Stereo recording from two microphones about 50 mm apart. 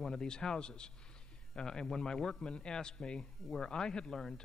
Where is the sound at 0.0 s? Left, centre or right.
Centre.